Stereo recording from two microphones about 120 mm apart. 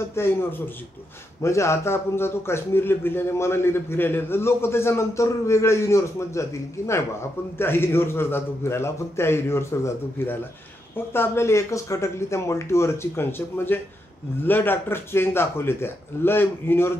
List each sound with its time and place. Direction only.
0.1 s a man's voice: 20° left (ahead or behind)